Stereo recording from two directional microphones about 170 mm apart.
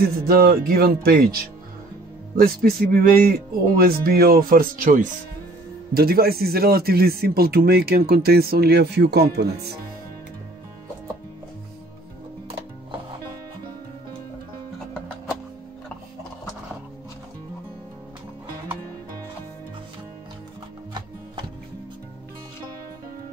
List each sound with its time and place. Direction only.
0.3 s speech: 60° right (ahead or behind)
2.3 s speech: 60° right (ahead or behind)
5.9 s speech: 65° right (ahead or behind)